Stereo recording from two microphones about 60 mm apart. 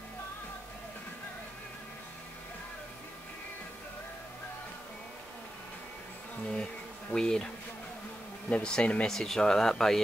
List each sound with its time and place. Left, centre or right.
7.1 s speech: centre
9.1 s speech: centre